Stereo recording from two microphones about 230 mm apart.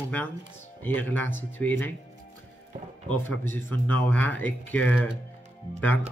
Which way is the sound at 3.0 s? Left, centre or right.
Centre.